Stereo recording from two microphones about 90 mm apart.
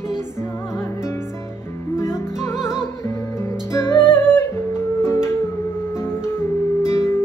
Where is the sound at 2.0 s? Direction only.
30° left (ahead or behind).